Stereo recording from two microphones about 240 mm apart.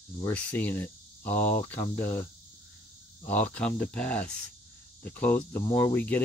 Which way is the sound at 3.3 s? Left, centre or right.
Centre.